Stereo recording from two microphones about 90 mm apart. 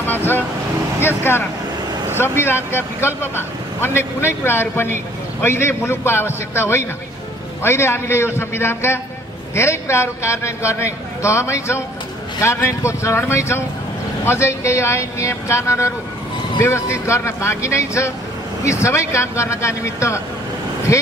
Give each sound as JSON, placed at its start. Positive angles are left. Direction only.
{"t": 0.0, "sound": "vehicle", "side_deg": 25}
{"t": 0.9, "sound": "a man's voice", "side_deg": 25}